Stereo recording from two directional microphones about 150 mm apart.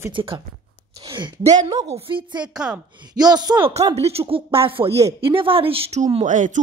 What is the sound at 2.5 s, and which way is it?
Speech, 5° right (ahead or behind).